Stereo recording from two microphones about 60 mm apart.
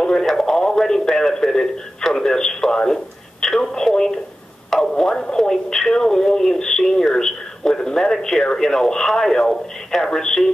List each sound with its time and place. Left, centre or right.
0.0 s radio: centre
4.6 s speech: centre